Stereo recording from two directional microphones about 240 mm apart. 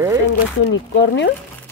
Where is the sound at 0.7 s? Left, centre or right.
Left.